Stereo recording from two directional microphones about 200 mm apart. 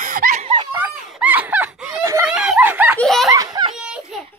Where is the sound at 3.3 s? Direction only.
20° right (ahead or behind).